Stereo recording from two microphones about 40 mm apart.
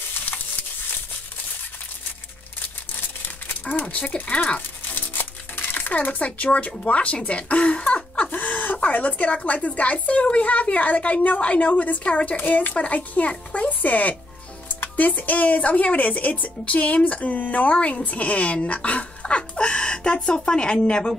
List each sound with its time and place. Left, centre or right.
3.8 s speech: left
4.6 s a sound: left
6.8 s speech: left
8.3 s chicken: left
8.7 s speech: left
12.4 s speech: left